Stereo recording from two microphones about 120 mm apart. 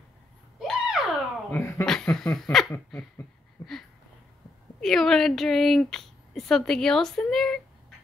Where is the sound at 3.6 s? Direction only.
35° left (ahead or behind).